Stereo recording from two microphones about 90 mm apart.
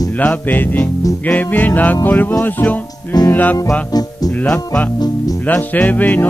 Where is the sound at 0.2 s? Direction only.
20° left (ahead or behind).